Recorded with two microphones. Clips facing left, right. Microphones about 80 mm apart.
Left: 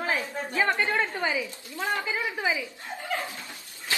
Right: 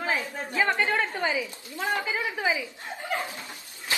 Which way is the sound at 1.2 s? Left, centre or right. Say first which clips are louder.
Right 1 dB; right.